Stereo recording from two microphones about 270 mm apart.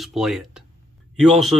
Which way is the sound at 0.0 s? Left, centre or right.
Centre.